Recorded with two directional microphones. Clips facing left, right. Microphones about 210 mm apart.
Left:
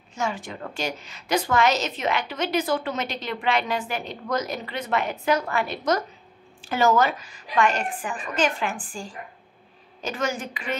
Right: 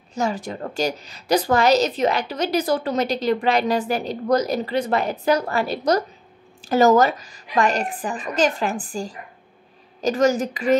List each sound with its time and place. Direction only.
0.1 s a woman's voice: 40° right (ahead or behind)